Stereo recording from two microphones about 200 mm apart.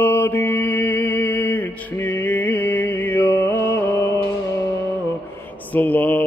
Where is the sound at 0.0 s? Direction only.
10° left (ahead or behind).